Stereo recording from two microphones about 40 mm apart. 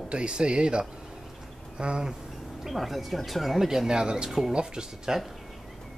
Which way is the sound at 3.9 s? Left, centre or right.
Centre.